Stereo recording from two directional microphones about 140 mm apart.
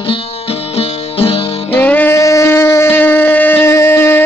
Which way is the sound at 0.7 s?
40° left (ahead or behind).